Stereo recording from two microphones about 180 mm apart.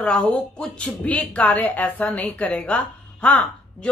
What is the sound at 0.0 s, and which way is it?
Speech, 5° left (ahead or behind).